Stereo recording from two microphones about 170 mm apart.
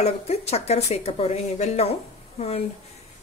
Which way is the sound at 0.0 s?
40° left (ahead or behind).